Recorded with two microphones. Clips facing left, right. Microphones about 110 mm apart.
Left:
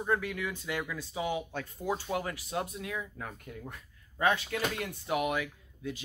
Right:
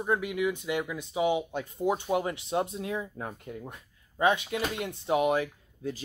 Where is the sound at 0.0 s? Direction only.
15° right (ahead or behind).